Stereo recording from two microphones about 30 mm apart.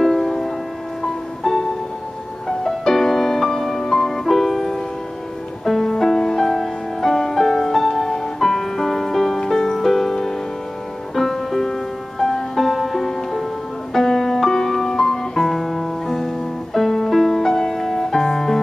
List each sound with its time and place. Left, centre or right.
0.0 s music: centre
14.5 s music: left